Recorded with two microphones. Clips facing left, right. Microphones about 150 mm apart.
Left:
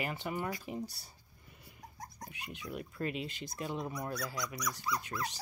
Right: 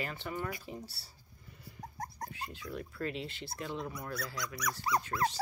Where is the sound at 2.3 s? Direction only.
15° left (ahead or behind).